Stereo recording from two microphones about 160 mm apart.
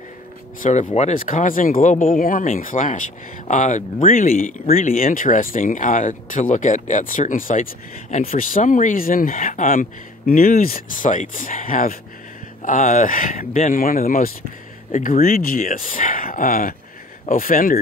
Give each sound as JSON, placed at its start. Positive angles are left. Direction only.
{"t": 0.6, "sound": "speech", "side_deg": 45}